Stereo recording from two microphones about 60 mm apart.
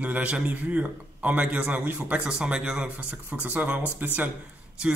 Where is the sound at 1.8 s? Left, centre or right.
Right.